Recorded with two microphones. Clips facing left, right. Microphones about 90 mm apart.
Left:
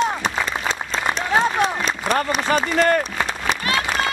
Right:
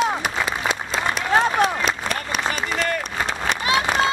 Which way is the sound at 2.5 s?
40° left (ahead or behind).